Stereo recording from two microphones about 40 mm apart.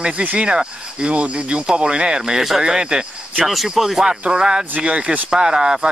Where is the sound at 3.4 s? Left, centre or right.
Centre.